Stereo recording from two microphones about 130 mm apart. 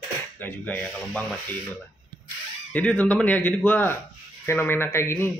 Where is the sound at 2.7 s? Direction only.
10° left (ahead or behind).